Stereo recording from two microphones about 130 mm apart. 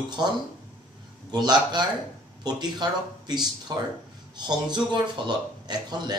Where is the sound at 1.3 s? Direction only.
35° right (ahead or behind).